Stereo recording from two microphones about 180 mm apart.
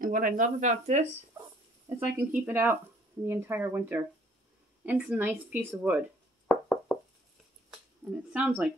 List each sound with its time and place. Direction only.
0.0 s speech: 50° right (ahead or behind)
2.1 s speech: 10° right (ahead or behind)
6.4 s music: 5° left (ahead or behind)
8.3 s speech: 5° right (ahead or behind)